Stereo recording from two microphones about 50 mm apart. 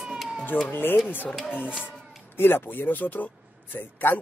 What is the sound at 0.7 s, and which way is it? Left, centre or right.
Speech, left.